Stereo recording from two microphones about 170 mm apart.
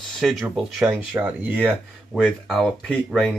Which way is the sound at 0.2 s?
Centre (ahead or behind).